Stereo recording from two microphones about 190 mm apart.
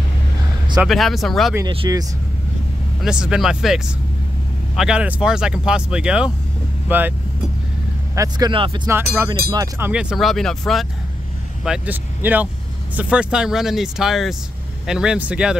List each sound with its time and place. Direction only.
0.7 s speech: centre (ahead or behind)
1.7 s speech: 25° right (ahead or behind)
3.0 s speech: 5° right (ahead or behind)
8.2 s speech: 20° right (ahead or behind)
8.8 s speech: 15° right (ahead or behind)